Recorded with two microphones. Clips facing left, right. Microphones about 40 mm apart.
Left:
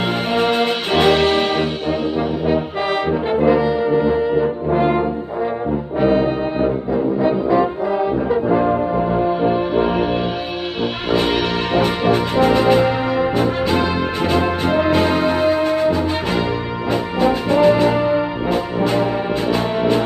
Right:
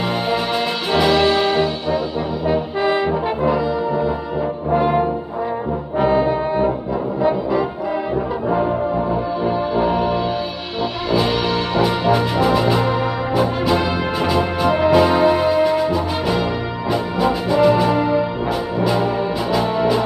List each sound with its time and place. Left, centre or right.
0.0 s music: left
0.9 s brass instrument: left
6.0 s brass instrument: left
9.4 s music: left
11.7 s music: left